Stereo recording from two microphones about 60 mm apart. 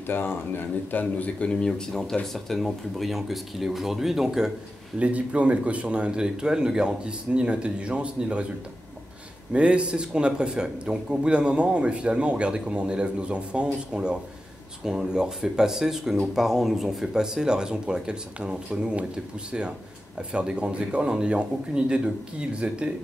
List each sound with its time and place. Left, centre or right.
0.0 s speech: left
0.9 s a man's voice: left; by 4.5 s centre
4.9 s speech: right
9.5 s a man's voice: centre
20.2 s a man's voice: centre